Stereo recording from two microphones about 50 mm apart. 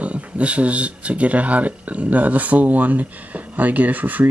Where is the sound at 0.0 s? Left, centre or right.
Right.